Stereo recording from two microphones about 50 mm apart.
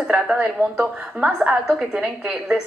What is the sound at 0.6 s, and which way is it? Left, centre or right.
Speech, right.